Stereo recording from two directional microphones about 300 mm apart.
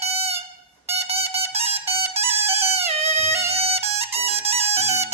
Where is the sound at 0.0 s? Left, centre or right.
Right.